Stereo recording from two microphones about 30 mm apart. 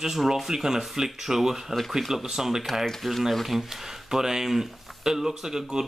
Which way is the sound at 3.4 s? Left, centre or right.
Centre.